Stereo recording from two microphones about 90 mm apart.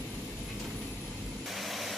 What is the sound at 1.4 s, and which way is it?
Vehicle, centre (ahead or behind).